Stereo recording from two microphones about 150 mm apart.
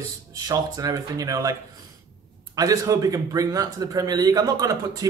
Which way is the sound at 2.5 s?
25° right (ahead or behind).